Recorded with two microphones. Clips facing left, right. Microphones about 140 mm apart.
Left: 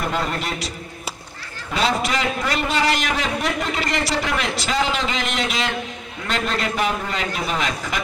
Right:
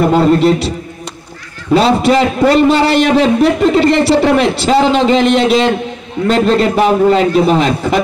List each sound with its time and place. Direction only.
0.1 s a man's voice: 30° right (ahead or behind)